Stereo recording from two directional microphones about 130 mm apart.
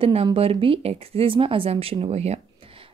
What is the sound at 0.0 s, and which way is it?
Speech, 45° right (ahead or behind).